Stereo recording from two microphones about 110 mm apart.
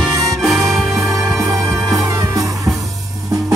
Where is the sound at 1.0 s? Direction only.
30° right (ahead or behind).